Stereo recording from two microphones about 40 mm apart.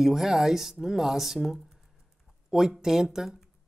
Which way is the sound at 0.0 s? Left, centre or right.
Centre.